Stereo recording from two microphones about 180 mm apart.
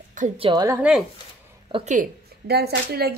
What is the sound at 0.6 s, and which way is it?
Speech, 15° right (ahead or behind).